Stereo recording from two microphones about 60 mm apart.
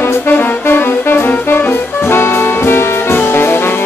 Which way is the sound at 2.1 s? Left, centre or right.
Left.